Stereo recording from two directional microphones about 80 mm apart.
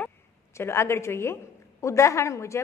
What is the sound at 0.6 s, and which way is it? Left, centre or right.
A woman's voice, left.